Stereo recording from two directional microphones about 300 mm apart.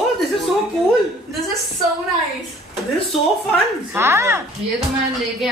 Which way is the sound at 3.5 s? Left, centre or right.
Centre.